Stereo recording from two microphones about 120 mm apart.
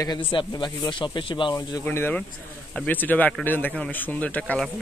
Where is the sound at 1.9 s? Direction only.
15° left (ahead or behind).